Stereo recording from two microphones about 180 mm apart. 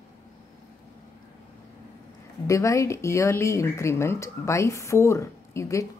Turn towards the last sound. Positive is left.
turn(degrees=15)  # may be behind; listen again after turning